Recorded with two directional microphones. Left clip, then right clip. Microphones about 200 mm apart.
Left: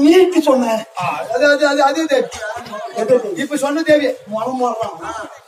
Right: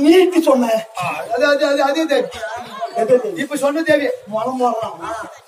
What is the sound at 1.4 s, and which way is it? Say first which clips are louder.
Speech: left 2 dB; 15° right (ahead or behind).